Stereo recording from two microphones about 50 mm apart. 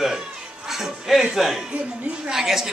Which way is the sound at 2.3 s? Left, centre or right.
Centre.